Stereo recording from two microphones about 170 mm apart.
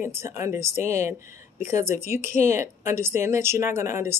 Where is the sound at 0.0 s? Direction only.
15° right (ahead or behind).